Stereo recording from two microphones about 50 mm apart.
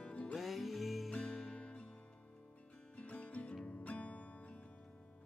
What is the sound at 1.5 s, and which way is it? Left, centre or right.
Music, left.